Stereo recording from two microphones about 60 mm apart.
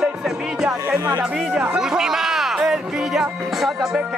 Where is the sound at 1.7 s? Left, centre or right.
Centre.